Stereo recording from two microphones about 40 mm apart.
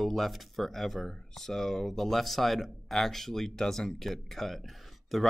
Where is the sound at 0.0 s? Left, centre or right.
Centre.